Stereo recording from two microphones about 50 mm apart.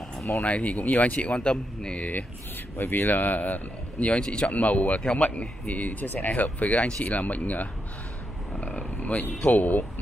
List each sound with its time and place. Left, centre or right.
0.4 s speech: left
2.8 s speech: left
4.1 s speech: centre
4.5 s speech: left
8.7 s a sound: left
9.5 s speech: left